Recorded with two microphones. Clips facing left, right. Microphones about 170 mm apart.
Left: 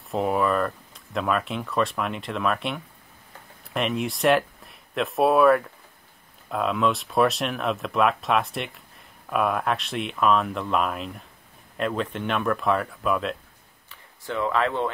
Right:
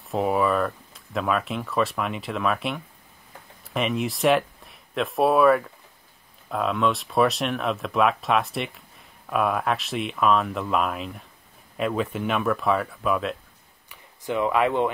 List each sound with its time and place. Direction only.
0.1 s speech: centre (ahead or behind)
13.8 s speech: 15° right (ahead or behind)